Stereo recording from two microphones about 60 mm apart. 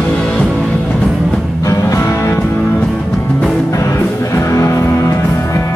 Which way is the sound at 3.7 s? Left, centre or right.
Left.